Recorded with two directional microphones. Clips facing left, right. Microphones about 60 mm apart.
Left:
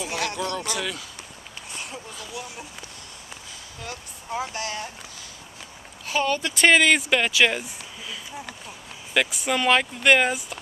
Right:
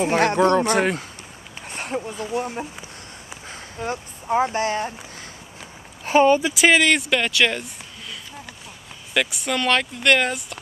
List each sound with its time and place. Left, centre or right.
0.0 s speech: right
6.0 s speech: right
6.4 s speech: centre